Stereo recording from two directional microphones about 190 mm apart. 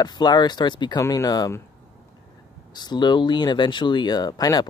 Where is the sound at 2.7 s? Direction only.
20° left (ahead or behind).